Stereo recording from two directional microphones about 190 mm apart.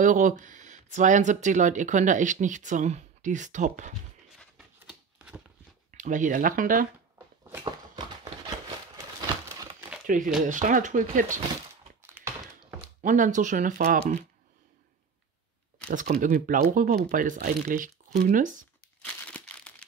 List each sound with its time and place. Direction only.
0.0 s speech: 40° right (ahead or behind)
5.9 s speech: 40° right (ahead or behind)
7.6 s a sound: 20° right (ahead or behind)
10.0 s speech: 45° right (ahead or behind)
12.2 s thunk: 10° right (ahead or behind)
13.0 s speech: 40° right (ahead or behind)
15.9 s speech: 45° right (ahead or behind)
19.2 s crumpling: 5° left (ahead or behind)